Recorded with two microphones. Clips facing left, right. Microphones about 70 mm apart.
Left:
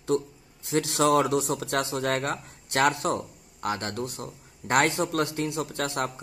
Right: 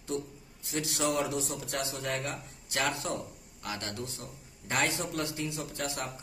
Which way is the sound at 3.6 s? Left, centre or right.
Left.